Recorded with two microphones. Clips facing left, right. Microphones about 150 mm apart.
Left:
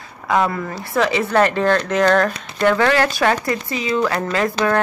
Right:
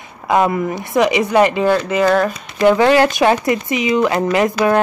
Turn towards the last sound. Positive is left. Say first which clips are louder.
# right 5 dB
turn(degrees=-20)  # may be behind; listen again after turning